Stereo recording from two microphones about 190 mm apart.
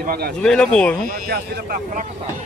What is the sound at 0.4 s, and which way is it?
Speech, 5° left (ahead or behind).